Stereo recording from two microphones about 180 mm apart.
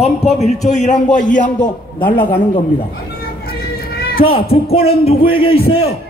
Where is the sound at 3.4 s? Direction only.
55° left (ahead or behind).